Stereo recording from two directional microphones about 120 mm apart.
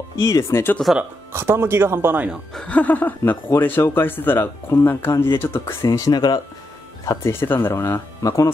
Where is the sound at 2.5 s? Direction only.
10° left (ahead or behind); by 6.4 s 35° left (ahead or behind).